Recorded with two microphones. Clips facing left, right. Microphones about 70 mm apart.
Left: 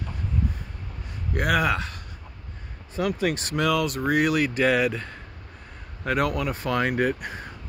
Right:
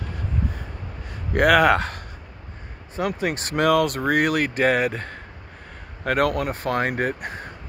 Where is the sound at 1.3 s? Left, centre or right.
Right.